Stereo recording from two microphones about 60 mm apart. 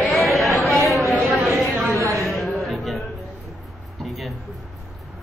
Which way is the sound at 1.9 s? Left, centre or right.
Right.